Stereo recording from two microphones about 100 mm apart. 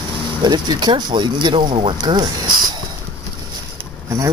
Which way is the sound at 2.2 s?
45° right (ahead or behind).